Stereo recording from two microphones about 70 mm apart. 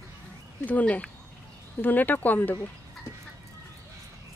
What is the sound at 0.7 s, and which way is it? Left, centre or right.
Speech, left.